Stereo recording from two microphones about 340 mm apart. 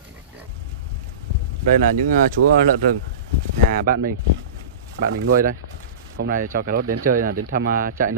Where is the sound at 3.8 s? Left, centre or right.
Right.